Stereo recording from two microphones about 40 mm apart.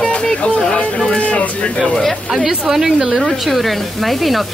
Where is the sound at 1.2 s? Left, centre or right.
Left.